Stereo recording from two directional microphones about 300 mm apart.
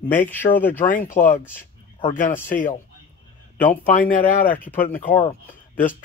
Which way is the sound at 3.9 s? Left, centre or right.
Left.